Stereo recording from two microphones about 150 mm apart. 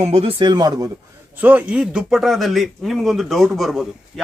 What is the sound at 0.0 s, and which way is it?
Speech, 40° right (ahead or behind).